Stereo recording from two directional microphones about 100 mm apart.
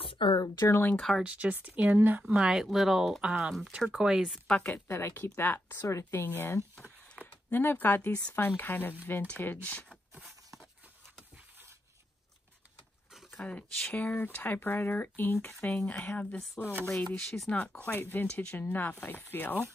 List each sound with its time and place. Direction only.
0.0 s a sound: 55° left (ahead or behind)
0.6 s speech: 25° left (ahead or behind)
0.9 s speech: 5° left (ahead or behind)
1.2 s speech: 15° right (ahead or behind)
2.2 s speech: 10° right (ahead or behind)
4.5 s speech: 15° left (ahead or behind)
4.8 s speech: 25° left (ahead or behind)
13.1 s speech: 5° left (ahead or behind)